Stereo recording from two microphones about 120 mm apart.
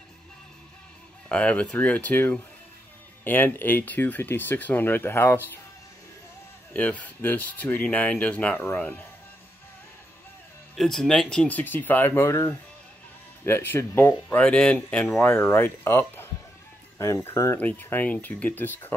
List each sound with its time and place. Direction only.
1.3 s speech: 10° left (ahead or behind)
6.7 s speech: 10° left (ahead or behind)
10.8 s speech: 5° left (ahead or behind); by 14.4 s 20° left (ahead or behind)
14.4 s speech: 10° left (ahead or behind)
15.3 s speech: 20° left (ahead or behind)